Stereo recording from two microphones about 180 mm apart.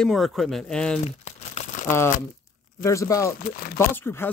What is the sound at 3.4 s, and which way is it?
Speech, 55° left (ahead or behind).